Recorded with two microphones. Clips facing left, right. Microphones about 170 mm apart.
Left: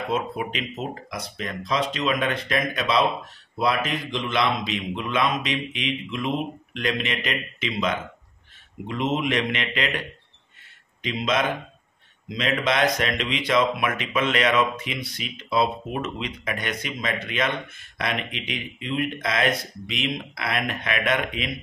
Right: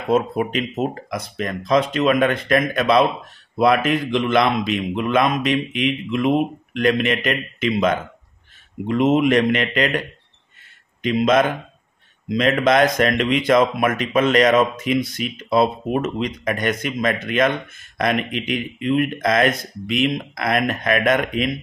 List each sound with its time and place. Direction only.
0.1 s speech: 45° right (ahead or behind)